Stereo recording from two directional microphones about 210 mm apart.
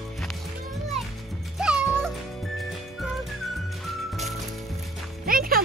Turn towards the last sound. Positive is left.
turn(degrees=-45)  # may be behind; listen again after turning